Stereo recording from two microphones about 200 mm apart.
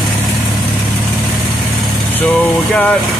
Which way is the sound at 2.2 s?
5° left (ahead or behind).